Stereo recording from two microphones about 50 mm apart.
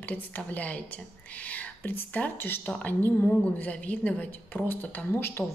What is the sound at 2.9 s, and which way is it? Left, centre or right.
A woman's voice, left.